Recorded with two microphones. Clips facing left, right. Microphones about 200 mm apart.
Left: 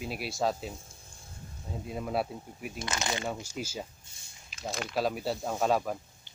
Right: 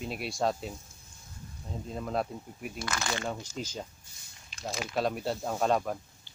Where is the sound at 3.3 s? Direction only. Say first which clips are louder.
Left 1 dB; 10° left (ahead or behind).